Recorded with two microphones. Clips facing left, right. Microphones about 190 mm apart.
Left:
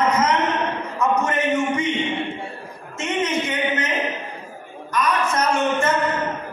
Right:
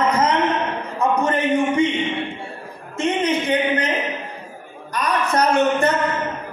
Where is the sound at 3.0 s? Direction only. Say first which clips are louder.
Right 3 dB; 35° right (ahead or behind).